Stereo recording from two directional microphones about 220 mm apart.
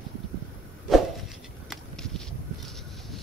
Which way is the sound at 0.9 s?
Centre (ahead or behind).